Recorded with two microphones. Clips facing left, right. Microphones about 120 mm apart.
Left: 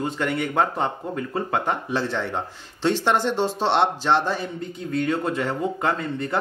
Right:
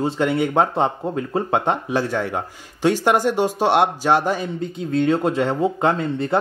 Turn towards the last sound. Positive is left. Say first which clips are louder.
# right 5 dB
turn(degrees=-25)  # may be behind; listen again after turning